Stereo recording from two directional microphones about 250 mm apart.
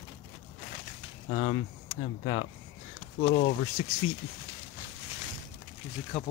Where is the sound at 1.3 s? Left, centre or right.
Left.